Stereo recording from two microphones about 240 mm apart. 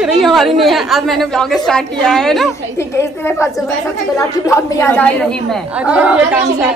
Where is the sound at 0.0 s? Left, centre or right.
Centre.